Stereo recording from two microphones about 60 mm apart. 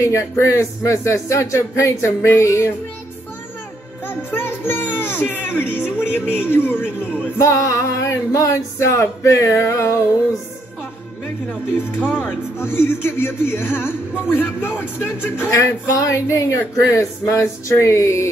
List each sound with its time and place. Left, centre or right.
0.0 s speech: left
4.0 s speech: left
5.8 s music: centre
6.4 s speech: left
7.3 s speech: left
8.7 s speech: left
12.0 s music: centre
12.5 s speech: left
15.5 s speech: left